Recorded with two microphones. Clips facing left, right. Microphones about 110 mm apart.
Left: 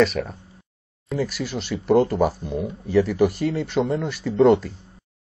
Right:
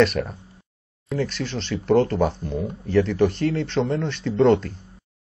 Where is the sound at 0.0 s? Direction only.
Centre (ahead or behind).